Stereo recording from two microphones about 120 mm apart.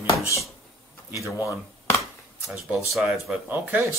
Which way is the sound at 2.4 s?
5° right (ahead or behind).